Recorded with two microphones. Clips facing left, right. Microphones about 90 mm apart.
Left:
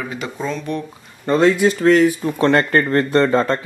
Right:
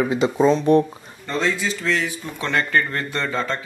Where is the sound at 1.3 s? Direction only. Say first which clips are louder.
Left 9 dB; 55° left (ahead or behind).